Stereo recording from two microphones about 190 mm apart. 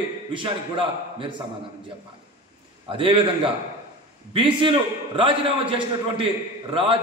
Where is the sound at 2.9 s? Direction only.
25° right (ahead or behind).